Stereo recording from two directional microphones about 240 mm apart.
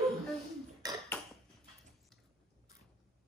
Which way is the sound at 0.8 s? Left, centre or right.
Centre.